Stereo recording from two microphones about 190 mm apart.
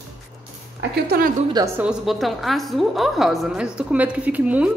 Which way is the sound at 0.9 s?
55° right (ahead or behind).